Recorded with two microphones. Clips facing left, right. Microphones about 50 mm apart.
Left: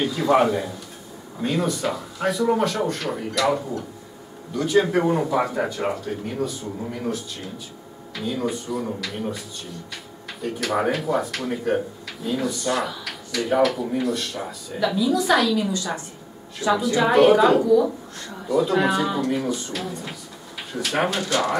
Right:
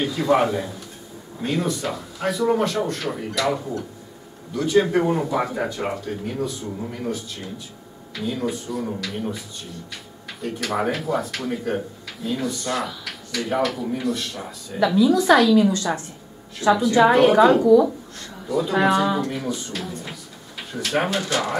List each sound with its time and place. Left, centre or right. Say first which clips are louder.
0.0 s speech: left 1 dB; centre
10.4 s a woman's voice: left 1 dB; centre